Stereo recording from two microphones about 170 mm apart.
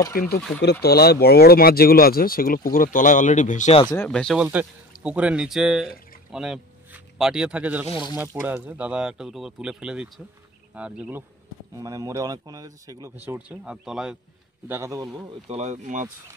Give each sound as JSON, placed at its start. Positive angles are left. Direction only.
{"t": 0.1, "sound": "speech", "side_deg": 60}
{"t": 0.6, "sound": "speech", "side_deg": 75}
{"t": 3.9, "sound": "speech", "side_deg": 10}
{"t": 11.7, "sound": "speech", "side_deg": -20}
{"t": 13.2, "sound": "speech", "side_deg": -10}
{"t": 14.7, "sound": "speech", "side_deg": -15}
{"t": 15.4, "sound": "speech", "side_deg": -40}